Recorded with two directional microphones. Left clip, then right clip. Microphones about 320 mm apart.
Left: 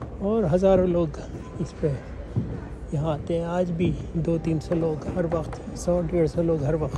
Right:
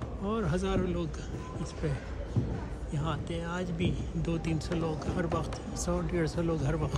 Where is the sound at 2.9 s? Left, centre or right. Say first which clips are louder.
Left 10 dB; centre.